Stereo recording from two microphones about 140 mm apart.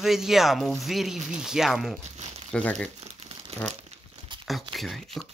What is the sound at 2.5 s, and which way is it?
Speech, 10° left (ahead or behind).